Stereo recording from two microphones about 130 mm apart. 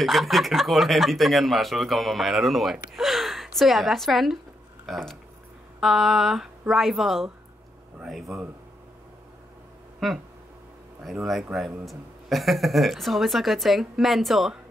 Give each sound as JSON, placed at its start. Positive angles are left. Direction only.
{"t": 0.0, "sound": "a woman's voice", "side_deg": 0}
{"t": 9.9, "sound": "a sound", "side_deg": 0}
{"t": 11.0, "sound": "speech", "side_deg": 0}